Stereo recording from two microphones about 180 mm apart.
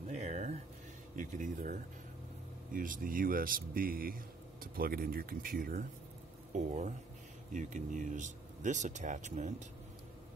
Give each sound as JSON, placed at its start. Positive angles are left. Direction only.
{"t": 0.1, "sound": "a sound", "side_deg": -40}
{"t": 1.1, "sound": "speech", "side_deg": -45}
{"t": 6.5, "sound": "speech", "side_deg": -40}